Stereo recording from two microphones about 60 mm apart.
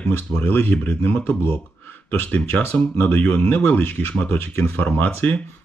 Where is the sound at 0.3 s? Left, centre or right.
Left.